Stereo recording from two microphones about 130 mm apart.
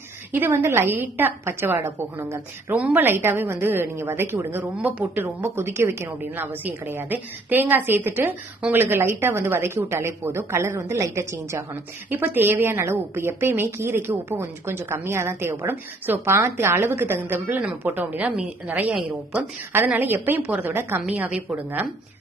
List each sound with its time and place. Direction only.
0.3 s a woman's voice: 15° right (ahead or behind)